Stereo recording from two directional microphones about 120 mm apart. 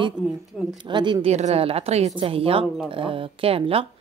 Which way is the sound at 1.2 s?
60° right (ahead or behind).